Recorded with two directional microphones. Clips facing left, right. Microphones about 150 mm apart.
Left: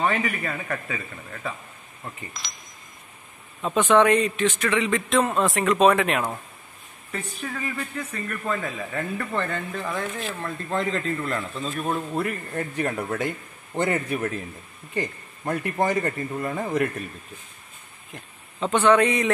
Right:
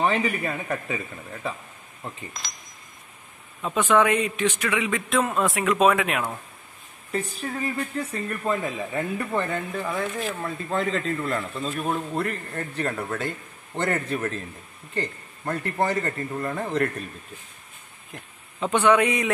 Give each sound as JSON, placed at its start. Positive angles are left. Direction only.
{"t": 0.0, "sound": "speech", "side_deg": -20}
{"t": 3.6, "sound": "a man's voice", "side_deg": 0}
{"t": 7.1, "sound": "a man's voice", "side_deg": -35}
{"t": 18.1, "sound": "speech", "side_deg": -10}